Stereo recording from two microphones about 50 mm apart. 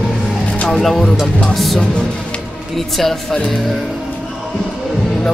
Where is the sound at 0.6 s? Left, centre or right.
Centre.